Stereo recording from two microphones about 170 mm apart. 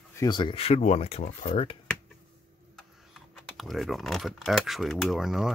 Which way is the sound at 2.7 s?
Centre (ahead or behind).